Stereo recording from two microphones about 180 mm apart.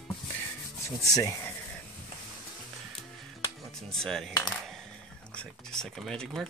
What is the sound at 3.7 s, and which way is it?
Speech, centre (ahead or behind).